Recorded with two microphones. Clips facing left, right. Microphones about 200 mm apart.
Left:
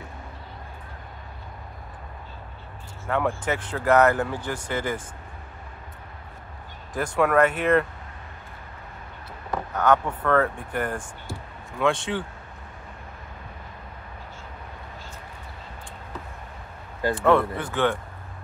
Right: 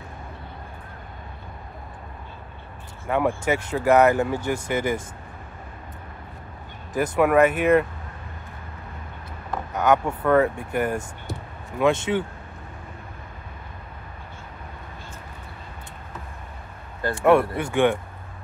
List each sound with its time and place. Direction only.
3.1 s speech: 10° right (ahead or behind)
6.9 s speech: 5° right (ahead or behind)
9.8 s speech: 10° right (ahead or behind)
17.2 s speech: 10° right (ahead or behind)